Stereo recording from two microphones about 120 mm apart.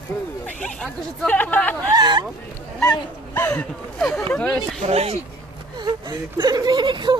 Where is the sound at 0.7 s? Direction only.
10° left (ahead or behind).